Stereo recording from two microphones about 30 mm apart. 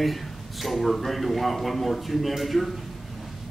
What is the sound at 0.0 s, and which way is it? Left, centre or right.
A man's voice, centre.